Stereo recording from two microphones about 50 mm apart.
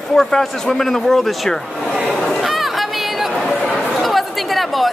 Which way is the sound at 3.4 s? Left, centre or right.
Centre.